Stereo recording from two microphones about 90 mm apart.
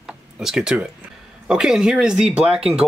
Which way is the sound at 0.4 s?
5° right (ahead or behind).